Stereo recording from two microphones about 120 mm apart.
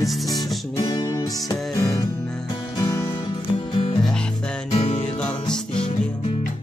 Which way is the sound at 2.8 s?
30° left (ahead or behind).